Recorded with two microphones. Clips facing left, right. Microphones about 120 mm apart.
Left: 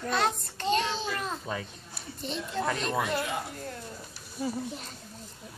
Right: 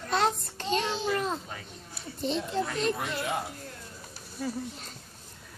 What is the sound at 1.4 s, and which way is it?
Speech, 90° left.